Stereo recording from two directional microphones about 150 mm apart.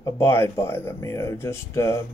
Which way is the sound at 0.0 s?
15° left (ahead or behind).